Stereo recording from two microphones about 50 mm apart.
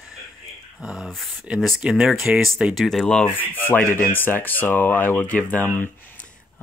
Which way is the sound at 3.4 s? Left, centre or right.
Left.